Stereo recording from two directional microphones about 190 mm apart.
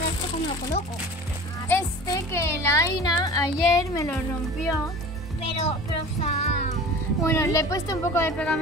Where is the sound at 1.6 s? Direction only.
15° left (ahead or behind).